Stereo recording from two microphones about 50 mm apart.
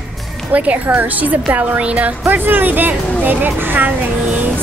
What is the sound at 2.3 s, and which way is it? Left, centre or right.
Speech, right.